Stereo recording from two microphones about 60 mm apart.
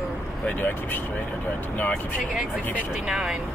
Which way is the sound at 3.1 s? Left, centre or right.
Centre.